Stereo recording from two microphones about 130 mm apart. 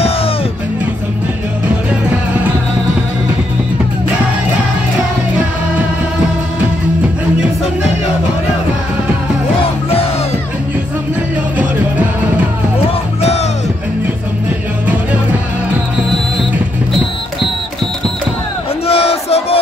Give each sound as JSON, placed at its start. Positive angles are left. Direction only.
{"t": 13.2, "sound": "music", "side_deg": 55}
{"t": 18.9, "sound": "crowd", "side_deg": 50}